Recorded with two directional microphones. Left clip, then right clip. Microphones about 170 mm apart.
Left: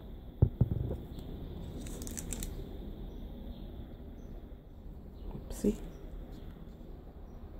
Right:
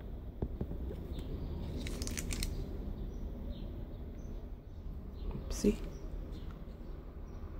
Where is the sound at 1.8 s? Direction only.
45° left (ahead or behind).